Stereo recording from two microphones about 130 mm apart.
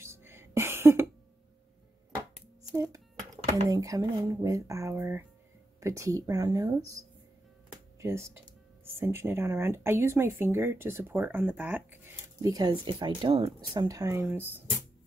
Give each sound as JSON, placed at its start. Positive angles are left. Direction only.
{"t": 0.0, "sound": "music", "side_deg": -20}
{"t": 2.7, "sound": "speech", "side_deg": -25}
{"t": 8.0, "sound": "speech", "side_deg": -20}
{"t": 12.4, "sound": "speech", "side_deg": -30}
{"t": 13.7, "sound": "speech", "side_deg": -25}